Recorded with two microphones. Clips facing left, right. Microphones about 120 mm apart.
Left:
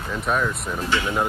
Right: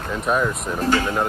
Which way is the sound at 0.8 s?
40° right (ahead or behind).